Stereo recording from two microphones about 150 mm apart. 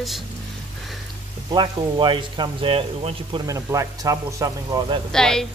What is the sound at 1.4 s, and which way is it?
Speech, 30° right (ahead or behind).